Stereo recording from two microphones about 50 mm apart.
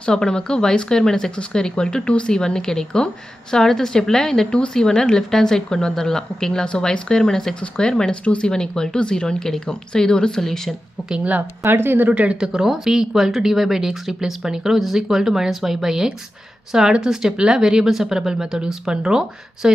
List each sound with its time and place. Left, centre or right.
0.0 s a woman's voice: centre
11.6 s speech: right
12.1 s speech: right
12.5 s speech: centre